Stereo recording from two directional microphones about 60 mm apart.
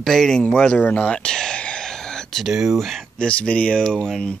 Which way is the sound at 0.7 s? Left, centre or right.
Left.